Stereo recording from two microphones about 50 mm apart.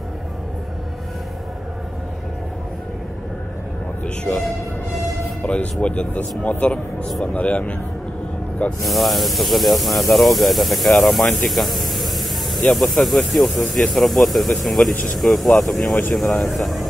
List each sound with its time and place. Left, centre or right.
5.4 s speech: left
8.8 s speech: centre